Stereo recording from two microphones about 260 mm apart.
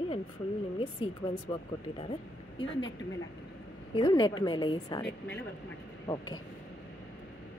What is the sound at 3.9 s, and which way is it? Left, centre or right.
A woman's voice, centre.